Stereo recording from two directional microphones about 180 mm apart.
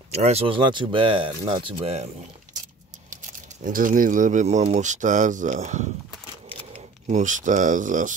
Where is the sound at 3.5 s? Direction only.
45° right (ahead or behind).